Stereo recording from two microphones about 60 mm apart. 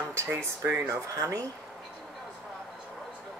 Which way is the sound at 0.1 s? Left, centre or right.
Right.